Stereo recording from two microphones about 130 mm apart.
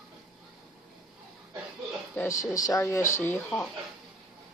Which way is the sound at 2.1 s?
25° left (ahead or behind).